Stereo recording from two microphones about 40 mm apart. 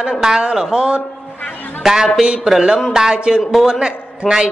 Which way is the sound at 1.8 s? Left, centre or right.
Centre.